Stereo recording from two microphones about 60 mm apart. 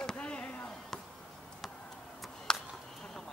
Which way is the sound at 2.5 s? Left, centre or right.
Centre.